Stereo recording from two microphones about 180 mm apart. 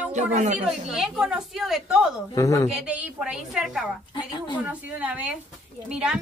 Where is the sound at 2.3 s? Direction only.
20° left (ahead or behind).